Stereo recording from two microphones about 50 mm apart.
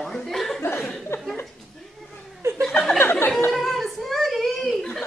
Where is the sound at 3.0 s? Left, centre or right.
Left.